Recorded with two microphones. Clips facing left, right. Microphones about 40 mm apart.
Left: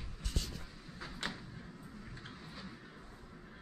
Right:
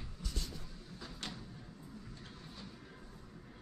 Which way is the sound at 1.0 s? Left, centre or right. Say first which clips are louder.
Left 5 dB; left.